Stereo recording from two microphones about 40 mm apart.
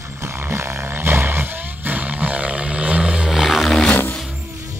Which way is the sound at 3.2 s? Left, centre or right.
Centre.